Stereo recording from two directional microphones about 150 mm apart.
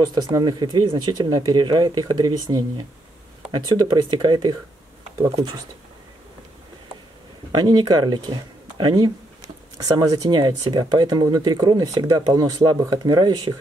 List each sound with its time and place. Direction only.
0.1 s speech: 25° right (ahead or behind)
3.6 s speech: 25° right (ahead or behind)
7.5 s speech: 30° right (ahead or behind)